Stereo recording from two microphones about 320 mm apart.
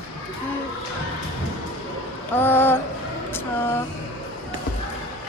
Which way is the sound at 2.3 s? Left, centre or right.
Centre.